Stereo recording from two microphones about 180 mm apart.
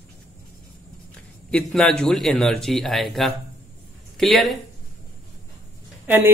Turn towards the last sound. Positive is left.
turn(degrees=-10)  # may be behind; listen again after turning